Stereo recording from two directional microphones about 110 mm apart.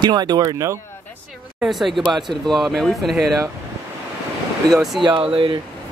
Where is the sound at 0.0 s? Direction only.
40° right (ahead or behind).